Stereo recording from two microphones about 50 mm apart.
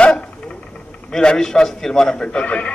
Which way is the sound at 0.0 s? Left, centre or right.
Centre.